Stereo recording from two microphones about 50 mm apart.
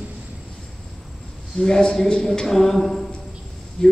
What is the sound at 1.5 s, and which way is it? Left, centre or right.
A man's voice, centre.